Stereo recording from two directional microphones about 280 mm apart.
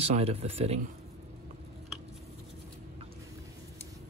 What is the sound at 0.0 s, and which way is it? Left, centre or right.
Speech, right.